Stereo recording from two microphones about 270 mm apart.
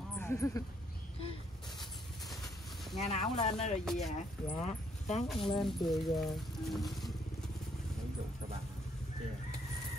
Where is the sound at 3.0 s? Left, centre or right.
Left.